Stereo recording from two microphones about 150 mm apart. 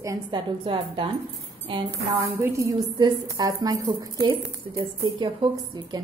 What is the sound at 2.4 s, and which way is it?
A woman's voice, 20° right (ahead or behind).